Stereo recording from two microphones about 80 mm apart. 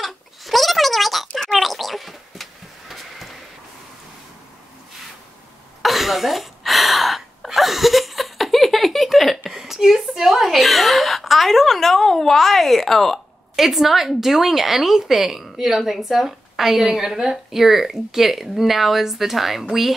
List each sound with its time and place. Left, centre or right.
0.0 s gargling: centre
5.8 s gasp: centre
19.7 s speech: centre